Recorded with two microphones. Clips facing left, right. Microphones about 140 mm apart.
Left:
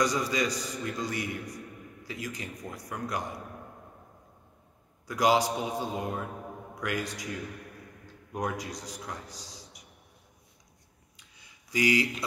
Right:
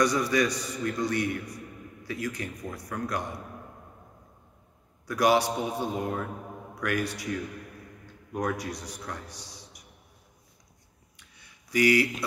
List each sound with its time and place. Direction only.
0.0 s a man's voice: 15° left (ahead or behind)
5.0 s a man's voice: 15° left (ahead or behind)
8.4 s a man's voice: 20° left (ahead or behind)
11.3 s a sound: 15° left (ahead or behind)